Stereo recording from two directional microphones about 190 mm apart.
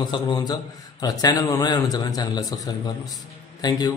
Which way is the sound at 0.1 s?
20° left (ahead or behind).